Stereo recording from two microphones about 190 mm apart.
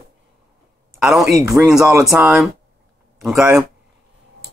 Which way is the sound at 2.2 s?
Centre (ahead or behind).